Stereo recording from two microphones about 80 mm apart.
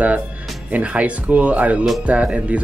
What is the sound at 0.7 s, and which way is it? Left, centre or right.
Speech, centre.